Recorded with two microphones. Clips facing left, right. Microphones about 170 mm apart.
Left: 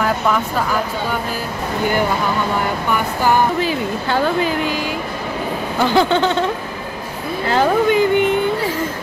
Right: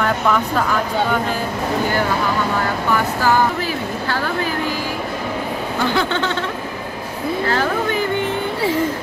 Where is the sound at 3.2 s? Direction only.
20° left (ahead or behind).